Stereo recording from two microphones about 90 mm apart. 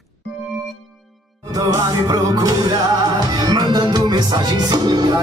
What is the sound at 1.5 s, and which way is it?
Music, 40° right (ahead or behind).